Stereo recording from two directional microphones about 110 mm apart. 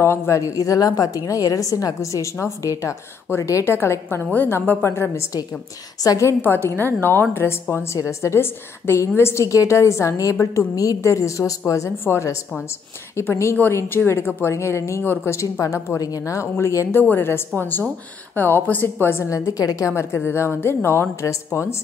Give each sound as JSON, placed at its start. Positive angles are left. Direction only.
{"t": 0.0, "sound": "a woman's voice", "side_deg": 25}
{"t": 6.4, "sound": "a woman's voice", "side_deg": 20}